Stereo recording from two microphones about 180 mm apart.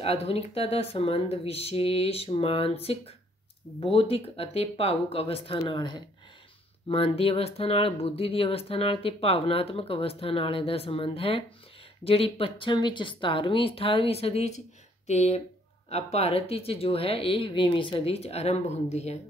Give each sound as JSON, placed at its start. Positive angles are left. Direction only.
{"t": 0.0, "sound": "speech", "side_deg": 35}